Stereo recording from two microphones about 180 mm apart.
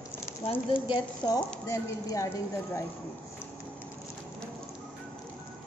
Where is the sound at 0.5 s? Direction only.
30° left (ahead or behind).